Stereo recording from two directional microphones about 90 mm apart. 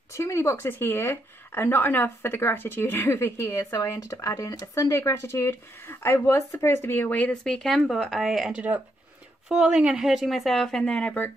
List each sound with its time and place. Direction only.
0.1 s a woman's voice: 30° left (ahead or behind)
7.4 s speech: 5° left (ahead or behind)